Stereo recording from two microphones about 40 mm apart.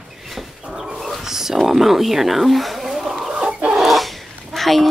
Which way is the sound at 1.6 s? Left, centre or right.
Centre.